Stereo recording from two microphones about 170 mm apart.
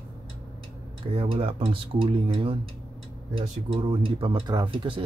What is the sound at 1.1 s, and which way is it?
Speech, 35° right (ahead or behind).